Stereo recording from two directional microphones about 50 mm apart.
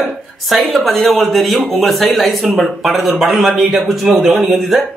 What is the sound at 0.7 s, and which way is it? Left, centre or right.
Speech, centre.